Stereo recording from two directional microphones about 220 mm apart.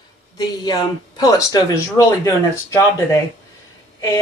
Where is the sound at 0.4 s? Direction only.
15° left (ahead or behind).